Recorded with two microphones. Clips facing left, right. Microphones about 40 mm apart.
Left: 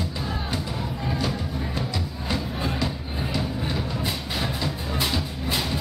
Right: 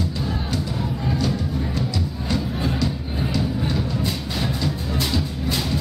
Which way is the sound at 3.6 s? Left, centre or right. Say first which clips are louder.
Right 3 dB; centre.